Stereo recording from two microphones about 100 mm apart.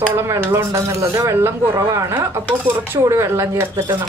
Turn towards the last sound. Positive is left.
turn(degrees=-25)  # may be behind; listen again after turning